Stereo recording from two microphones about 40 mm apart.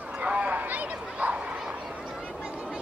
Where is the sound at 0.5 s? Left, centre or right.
Right.